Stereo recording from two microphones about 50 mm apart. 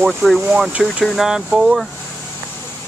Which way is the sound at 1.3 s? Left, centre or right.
Centre.